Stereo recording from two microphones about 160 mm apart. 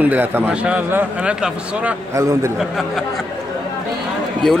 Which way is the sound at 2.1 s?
20° right (ahead or behind).